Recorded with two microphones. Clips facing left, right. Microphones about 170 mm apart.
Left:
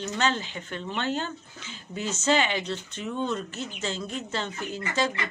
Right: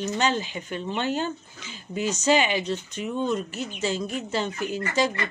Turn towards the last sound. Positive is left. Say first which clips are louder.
# right 3 dB
turn(degrees=-15)  # may be behind; listen again after turning